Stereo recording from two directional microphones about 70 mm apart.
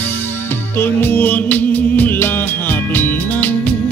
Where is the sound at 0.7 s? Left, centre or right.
Left.